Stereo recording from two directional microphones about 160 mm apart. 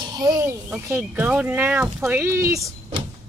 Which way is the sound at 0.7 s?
15° right (ahead or behind).